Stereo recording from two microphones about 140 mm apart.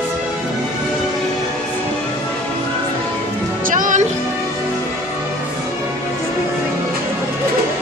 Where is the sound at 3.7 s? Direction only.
70° right (ahead or behind).